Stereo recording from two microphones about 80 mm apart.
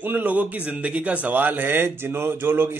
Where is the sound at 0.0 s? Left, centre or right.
Right.